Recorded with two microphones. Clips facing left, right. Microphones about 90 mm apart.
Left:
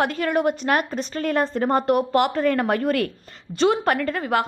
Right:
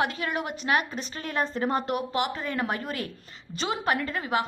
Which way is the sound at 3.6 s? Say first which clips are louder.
Left 8 dB; 50° left (ahead or behind).